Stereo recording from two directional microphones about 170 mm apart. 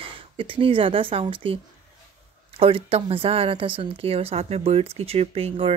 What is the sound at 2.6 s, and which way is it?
Speech, 35° right (ahead or behind).